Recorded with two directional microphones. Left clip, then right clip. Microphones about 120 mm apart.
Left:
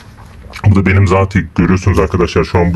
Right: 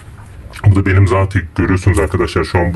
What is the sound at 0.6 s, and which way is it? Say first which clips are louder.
Speech: left 2 dB; 50° left (ahead or behind).